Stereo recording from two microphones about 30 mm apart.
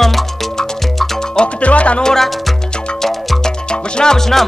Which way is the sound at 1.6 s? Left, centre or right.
Left.